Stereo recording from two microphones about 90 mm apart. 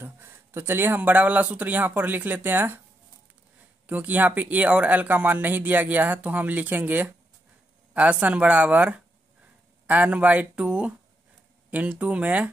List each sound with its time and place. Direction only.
0.0 s a man's voice: 25° right (ahead or behind)
3.8 s speech: 20° right (ahead or behind)